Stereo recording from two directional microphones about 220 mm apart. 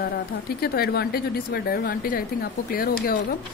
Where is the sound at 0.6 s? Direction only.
45° left (ahead or behind).